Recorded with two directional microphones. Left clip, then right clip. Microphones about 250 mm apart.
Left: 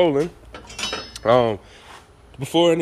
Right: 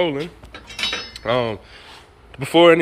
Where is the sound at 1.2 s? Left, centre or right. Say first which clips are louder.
Left 5 dB; centre.